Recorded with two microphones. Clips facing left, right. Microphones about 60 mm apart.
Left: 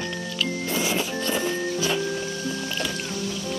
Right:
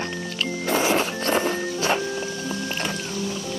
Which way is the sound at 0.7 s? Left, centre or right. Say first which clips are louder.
Right 7 dB; right.